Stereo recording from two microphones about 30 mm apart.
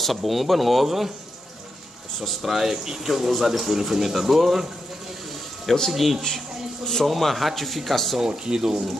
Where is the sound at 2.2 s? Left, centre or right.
Centre.